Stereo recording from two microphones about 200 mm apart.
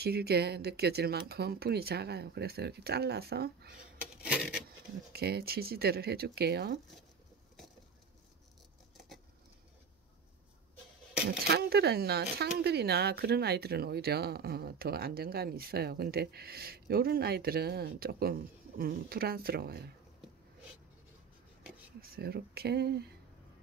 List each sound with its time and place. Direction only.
0.0 s speech: 55° right (ahead or behind)
4.0 s coin: 5° right (ahead or behind)
5.1 s speech: 50° right (ahead or behind)
11.2 s speech: 50° right (ahead or behind)
22.0 s speech: 50° right (ahead or behind)